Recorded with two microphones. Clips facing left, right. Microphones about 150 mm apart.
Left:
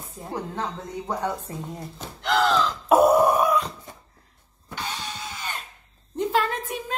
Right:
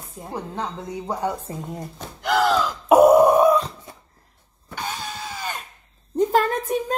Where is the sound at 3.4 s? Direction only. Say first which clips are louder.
Right 5 dB; 30° right (ahead or behind).